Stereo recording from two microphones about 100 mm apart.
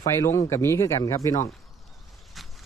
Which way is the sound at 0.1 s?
30° left (ahead or behind).